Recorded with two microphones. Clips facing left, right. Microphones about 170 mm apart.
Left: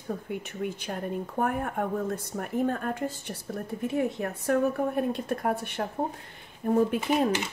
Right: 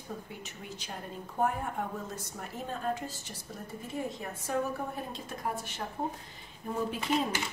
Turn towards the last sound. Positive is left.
turn(degrees=55)  # may be behind; listen again after turning